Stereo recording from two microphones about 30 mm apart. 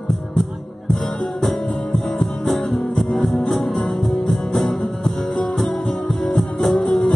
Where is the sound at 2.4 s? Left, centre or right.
Centre.